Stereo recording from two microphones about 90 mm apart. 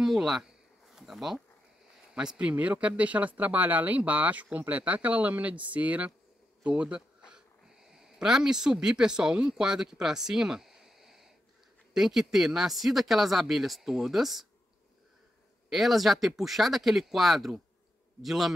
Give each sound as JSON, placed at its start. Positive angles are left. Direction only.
{"t": 0.0, "sound": "a sound", "side_deg": -5}
{"t": 2.1, "sound": "speech", "side_deg": -10}
{"t": 15.7, "sound": "speech", "side_deg": 0}